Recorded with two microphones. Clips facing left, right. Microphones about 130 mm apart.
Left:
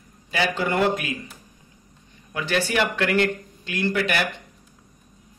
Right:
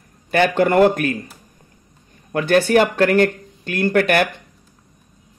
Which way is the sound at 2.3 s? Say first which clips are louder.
Right 9 dB; 50° right (ahead or behind).